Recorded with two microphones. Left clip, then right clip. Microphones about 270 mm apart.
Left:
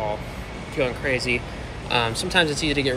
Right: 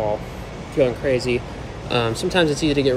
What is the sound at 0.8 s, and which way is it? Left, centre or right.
Speech, centre.